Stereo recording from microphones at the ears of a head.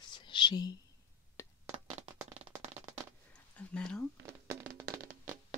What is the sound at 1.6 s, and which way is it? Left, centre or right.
Crack, right.